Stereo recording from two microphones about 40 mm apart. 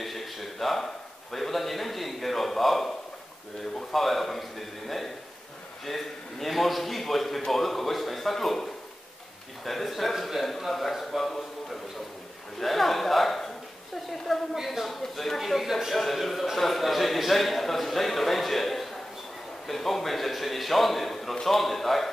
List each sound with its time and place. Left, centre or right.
0.0 s speech: centre
3.9 s a man's voice: centre
9.7 s a man's voice: centre